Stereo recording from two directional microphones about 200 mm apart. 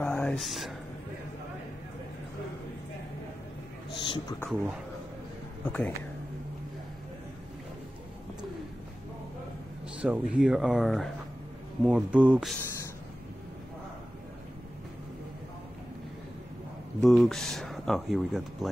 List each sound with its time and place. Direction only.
0.0 s a sound: 5° left (ahead or behind)
4.0 s speech: 20° left (ahead or behind)
5.7 s speech: 10° left (ahead or behind)
10.0 s speech: 5° right (ahead or behind)
17.0 s speech: centre (ahead or behind)